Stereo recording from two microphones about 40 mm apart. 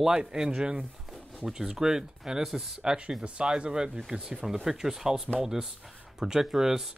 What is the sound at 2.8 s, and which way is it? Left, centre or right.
Speech, right.